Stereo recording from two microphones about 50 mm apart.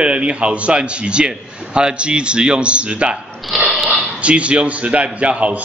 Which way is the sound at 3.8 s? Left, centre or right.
Right.